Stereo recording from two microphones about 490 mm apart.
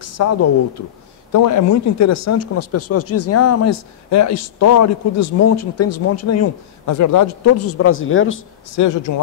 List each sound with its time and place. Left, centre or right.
0.0 s speech: left
8.8 s speech: left